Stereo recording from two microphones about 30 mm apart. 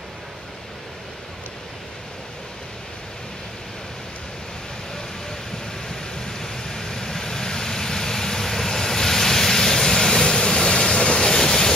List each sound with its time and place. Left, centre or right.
5.9 s vehicle: centre
11.2 s vehicle: centre